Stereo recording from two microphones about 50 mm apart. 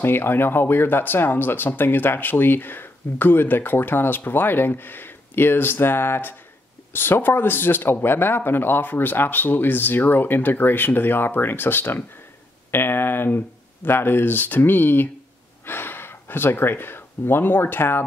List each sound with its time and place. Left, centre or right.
0.0 s speech: left